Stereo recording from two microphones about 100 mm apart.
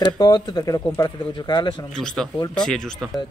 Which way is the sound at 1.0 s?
50° left (ahead or behind).